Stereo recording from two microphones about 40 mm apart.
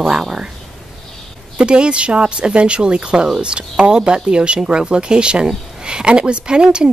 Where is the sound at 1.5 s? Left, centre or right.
Right.